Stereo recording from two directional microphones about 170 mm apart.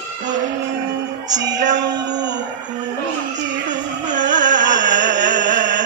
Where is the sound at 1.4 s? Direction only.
90° right.